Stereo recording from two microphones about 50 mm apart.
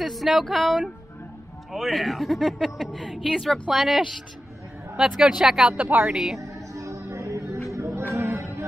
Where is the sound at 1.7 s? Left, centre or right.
Centre.